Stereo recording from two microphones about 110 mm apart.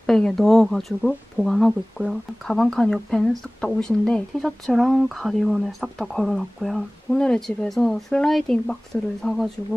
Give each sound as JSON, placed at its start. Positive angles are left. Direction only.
{"t": 0.0, "sound": "speech", "side_deg": 5}